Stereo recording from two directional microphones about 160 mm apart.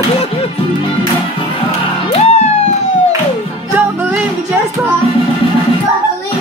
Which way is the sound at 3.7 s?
10° right (ahead or behind).